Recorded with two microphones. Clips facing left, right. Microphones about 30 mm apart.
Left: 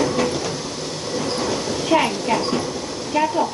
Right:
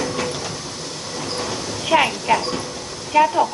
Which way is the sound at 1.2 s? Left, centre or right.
Centre.